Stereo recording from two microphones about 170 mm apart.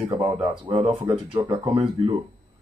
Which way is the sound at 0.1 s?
10° right (ahead or behind).